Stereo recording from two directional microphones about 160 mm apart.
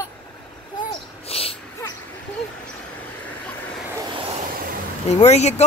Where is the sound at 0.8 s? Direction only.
35° left (ahead or behind).